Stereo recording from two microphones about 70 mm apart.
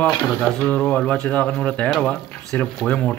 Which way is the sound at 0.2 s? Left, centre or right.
Centre.